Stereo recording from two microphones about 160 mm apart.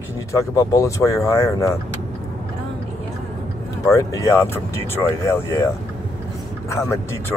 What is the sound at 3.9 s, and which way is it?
Speech, 20° left (ahead or behind).